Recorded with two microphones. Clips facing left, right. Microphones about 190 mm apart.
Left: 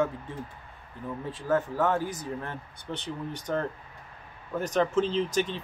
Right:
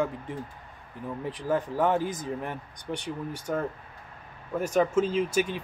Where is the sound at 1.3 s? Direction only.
15° right (ahead or behind).